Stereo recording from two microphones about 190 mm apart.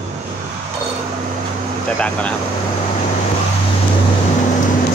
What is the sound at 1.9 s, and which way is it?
Speech, 5° left (ahead or behind).